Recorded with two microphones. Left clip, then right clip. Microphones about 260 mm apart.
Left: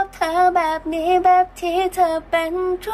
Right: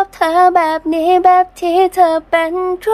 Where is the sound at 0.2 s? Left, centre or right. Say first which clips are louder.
Right 6 dB; centre.